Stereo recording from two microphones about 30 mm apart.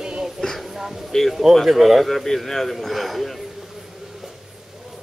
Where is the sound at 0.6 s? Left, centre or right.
Centre.